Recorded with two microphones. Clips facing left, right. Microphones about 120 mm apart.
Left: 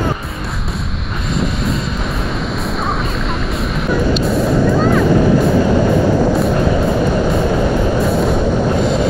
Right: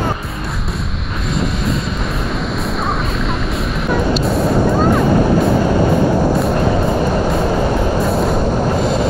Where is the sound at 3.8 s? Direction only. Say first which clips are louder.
Left 1 dB; centre (ahead or behind).